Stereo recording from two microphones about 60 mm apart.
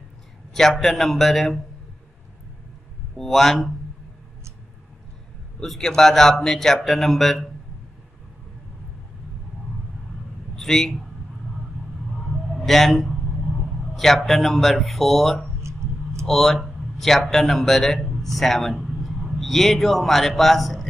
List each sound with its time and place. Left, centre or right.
0.6 s a man's voice: centre
3.2 s a man's voice: centre
5.6 s a man's voice: centre
10.5 s a man's voice: centre
12.6 s a man's voice: centre
15.6 s tick-tock: right
16.3 s a man's voice: centre